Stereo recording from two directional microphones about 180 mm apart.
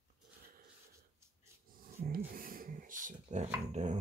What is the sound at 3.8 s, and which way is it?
Dog, 40° right (ahead or behind).